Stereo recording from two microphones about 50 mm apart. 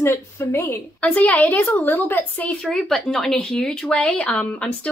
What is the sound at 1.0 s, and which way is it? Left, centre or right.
A woman's voice, left.